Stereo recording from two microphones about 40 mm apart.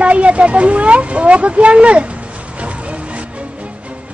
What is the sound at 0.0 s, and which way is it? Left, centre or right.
A woman's voice, right.